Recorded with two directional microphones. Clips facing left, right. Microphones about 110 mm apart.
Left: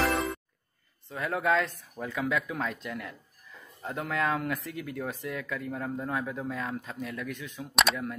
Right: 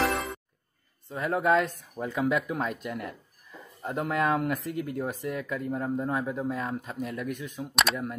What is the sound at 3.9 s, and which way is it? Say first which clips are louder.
Speech: right 3 dB; 35° right (ahead or behind).